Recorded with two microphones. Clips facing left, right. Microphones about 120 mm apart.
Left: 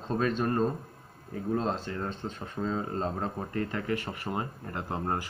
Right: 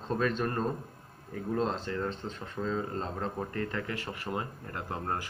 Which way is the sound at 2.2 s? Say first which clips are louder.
Left 2 dB; 35° left (ahead or behind).